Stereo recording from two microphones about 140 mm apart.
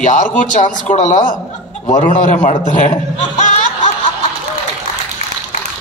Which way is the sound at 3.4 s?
60° left (ahead or behind).